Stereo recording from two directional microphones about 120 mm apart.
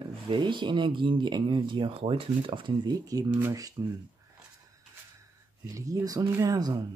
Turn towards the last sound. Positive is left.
turn(degrees=-30)  # may be behind; listen again after turning